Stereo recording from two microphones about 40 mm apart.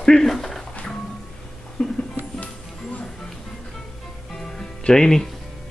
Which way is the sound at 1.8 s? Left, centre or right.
Left.